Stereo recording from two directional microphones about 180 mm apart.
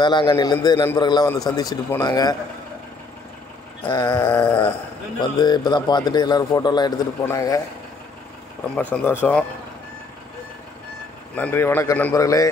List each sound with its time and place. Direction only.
0.0 s a man's voice: 25° left (ahead or behind)
3.9 s a man's voice: 25° left (ahead or behind)
4.2 s a man's voice: 10° left (ahead or behind)
5.2 s a man's voice: 25° left (ahead or behind)
8.9 s a man's voice: 10° left (ahead or behind)
11.3 s a man's voice: 10° left (ahead or behind)